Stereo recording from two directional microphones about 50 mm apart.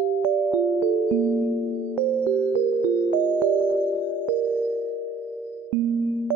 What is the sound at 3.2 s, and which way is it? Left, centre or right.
Music, right.